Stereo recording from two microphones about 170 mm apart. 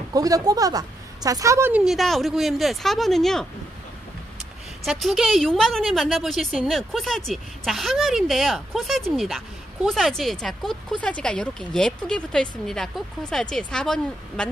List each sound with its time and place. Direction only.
0.1 s a woman's voice: 20° right (ahead or behind)
1.9 s speech: centre (ahead or behind)
4.8 s speech: centre (ahead or behind)